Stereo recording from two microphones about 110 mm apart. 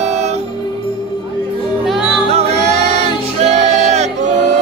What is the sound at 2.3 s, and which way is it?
Music, 70° right (ahead or behind).